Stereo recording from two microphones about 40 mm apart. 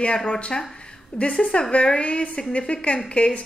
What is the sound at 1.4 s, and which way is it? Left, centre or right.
A woman's voice, left.